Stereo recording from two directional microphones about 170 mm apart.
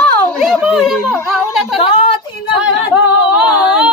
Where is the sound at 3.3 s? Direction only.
5° right (ahead or behind).